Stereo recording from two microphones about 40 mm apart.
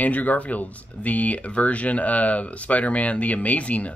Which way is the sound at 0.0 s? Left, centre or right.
Left.